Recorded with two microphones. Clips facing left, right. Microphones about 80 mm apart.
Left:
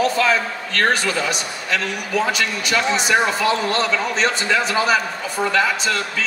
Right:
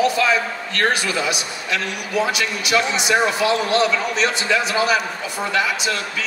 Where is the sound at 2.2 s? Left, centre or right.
Left.